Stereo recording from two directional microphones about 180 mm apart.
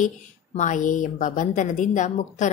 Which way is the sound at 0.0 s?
45° left (ahead or behind).